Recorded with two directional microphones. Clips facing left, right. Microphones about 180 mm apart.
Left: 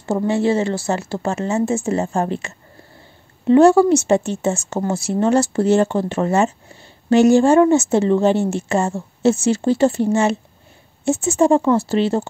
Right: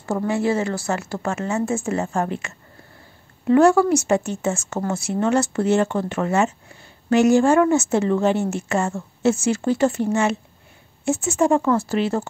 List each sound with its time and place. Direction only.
0.0 s a woman's voice: 25° left (ahead or behind)